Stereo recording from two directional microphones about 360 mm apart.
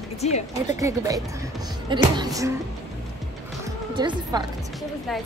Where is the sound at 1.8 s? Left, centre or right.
Centre.